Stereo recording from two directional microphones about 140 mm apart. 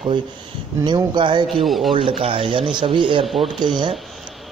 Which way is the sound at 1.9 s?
40° right (ahead or behind).